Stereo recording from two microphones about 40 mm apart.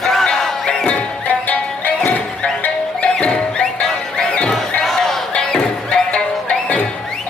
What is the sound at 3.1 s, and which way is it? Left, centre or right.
Music, left.